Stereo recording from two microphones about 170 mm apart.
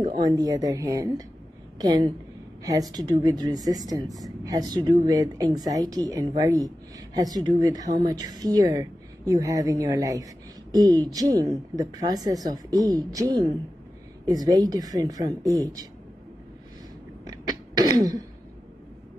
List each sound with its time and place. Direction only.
0.2 s speech: 25° right (ahead or behind)
17.2 s throat clearing: 25° right (ahead or behind)